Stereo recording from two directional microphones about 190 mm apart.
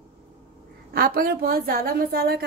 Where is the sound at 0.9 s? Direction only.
55° right (ahead or behind).